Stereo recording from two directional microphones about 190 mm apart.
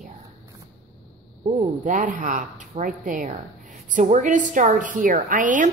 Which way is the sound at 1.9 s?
45° right (ahead or behind).